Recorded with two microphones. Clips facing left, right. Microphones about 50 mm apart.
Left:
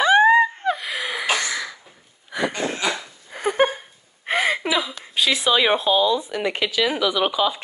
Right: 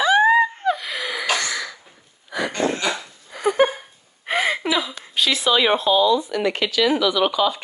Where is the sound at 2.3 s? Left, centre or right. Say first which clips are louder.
Right 2 dB; centre.